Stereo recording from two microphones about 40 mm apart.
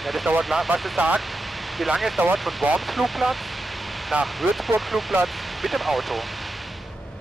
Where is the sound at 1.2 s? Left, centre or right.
Centre.